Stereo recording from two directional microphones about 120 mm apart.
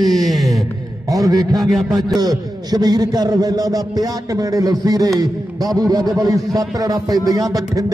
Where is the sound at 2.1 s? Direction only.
35° right (ahead or behind).